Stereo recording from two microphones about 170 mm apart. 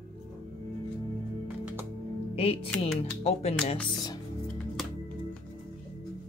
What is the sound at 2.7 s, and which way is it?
Speech, 10° left (ahead or behind).